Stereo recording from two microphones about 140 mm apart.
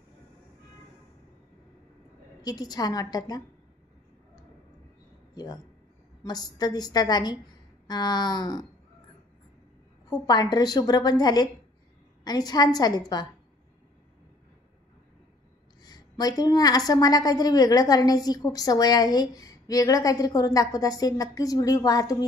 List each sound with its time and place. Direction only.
2.4 s a woman's voice: 30° left (ahead or behind)
5.3 s a woman's voice: 30° left (ahead or behind)
10.0 s a woman's voice: 30° left (ahead or behind)
15.8 s a woman's voice: 30° left (ahead or behind)